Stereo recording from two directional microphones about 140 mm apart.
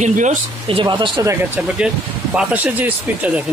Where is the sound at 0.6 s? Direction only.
35° right (ahead or behind).